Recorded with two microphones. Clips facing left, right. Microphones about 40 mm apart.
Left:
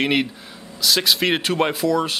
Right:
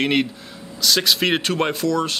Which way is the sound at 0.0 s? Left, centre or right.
Centre.